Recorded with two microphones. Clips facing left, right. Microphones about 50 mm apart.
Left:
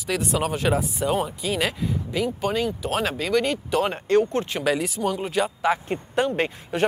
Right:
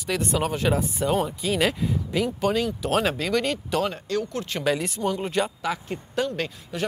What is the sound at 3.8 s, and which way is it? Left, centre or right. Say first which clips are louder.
Speech: left 6 dB; left.